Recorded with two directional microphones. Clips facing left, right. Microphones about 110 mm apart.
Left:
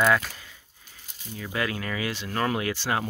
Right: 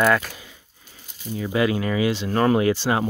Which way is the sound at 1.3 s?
20° right (ahead or behind).